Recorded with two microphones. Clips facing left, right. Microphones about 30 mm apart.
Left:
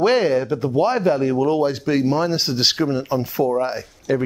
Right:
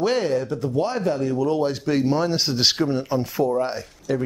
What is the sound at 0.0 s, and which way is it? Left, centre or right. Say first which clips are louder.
Speech: left 5 dB; left.